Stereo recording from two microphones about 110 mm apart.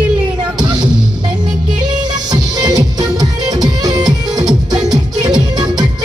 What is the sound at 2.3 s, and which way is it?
Music, 35° right (ahead or behind).